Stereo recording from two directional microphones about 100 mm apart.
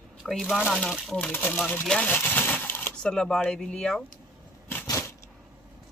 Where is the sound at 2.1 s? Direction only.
20° left (ahead or behind).